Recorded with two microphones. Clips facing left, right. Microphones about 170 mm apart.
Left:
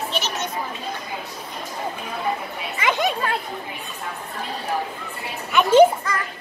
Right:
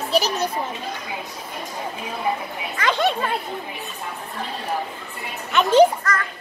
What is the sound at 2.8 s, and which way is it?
Children playing, 10° left (ahead or behind).